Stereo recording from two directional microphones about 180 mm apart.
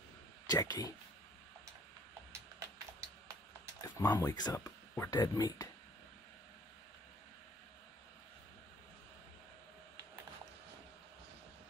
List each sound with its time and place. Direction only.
0.5 s speech: 20° left (ahead or behind)
3.8 s speech: 15° left (ahead or behind)